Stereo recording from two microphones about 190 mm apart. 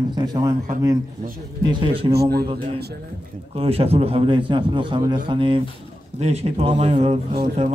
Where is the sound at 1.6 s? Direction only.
25° right (ahead or behind).